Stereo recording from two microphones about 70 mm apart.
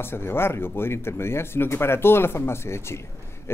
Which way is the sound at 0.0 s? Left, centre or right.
Left.